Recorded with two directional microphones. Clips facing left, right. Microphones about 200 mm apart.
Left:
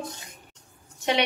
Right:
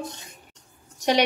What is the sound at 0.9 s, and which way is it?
Speech, 40° right (ahead or behind).